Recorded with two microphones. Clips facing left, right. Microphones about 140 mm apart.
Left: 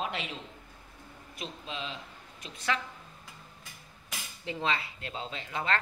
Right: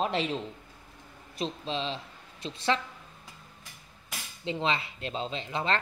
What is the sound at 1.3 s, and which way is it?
A woman's voice, 30° right (ahead or behind).